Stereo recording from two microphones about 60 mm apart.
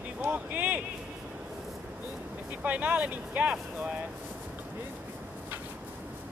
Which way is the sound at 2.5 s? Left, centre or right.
Right.